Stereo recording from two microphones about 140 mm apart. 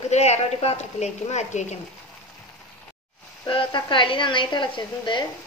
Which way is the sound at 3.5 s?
35° left (ahead or behind).